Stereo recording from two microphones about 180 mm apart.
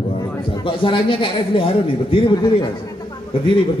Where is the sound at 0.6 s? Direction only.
30° left (ahead or behind).